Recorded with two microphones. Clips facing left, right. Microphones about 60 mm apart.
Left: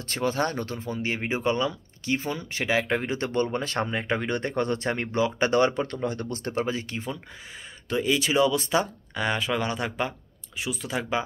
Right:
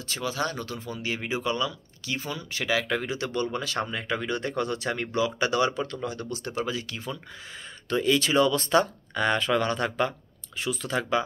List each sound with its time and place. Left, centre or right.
0.0 s speech: left
7.9 s speech: centre